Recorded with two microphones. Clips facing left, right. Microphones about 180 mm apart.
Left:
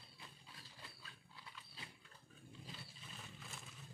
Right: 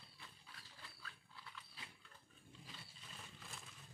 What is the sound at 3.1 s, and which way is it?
Vehicle, 5° left (ahead or behind).